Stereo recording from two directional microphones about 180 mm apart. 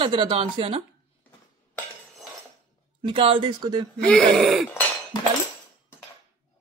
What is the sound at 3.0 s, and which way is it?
Speech, 30° right (ahead or behind).